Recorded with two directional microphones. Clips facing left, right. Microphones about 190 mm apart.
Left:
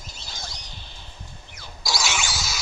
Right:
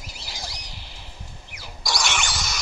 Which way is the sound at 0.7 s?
90° right.